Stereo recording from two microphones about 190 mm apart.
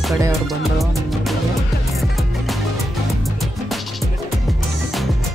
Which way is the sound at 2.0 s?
Centre (ahead or behind).